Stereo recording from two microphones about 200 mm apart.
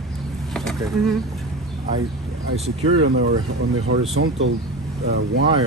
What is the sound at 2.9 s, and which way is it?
Speech, 90° right.